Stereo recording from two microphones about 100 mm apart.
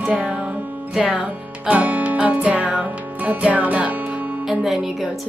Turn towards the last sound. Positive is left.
turn(degrees=0)  # may be behind; listen again after turning